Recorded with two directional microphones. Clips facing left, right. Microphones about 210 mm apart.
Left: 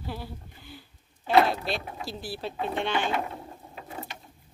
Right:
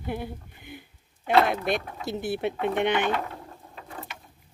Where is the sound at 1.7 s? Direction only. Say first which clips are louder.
Right 5 dB; 20° right (ahead or behind).